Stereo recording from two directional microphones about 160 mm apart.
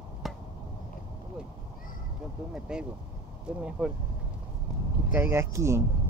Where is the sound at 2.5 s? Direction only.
5° right (ahead or behind).